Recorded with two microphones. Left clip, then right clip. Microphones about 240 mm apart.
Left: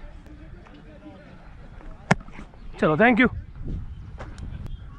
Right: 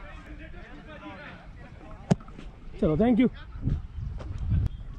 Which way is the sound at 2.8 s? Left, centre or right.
Centre.